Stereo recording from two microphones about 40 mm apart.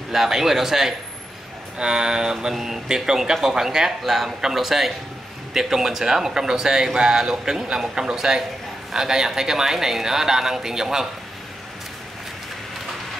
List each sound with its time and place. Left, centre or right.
0.1 s a man's voice: centre